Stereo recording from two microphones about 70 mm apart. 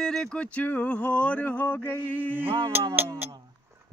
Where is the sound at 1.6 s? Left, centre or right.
Left.